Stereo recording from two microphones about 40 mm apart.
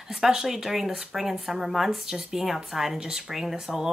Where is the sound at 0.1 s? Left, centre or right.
Centre.